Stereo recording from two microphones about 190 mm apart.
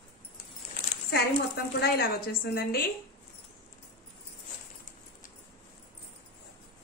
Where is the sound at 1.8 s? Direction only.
55° left (ahead or behind).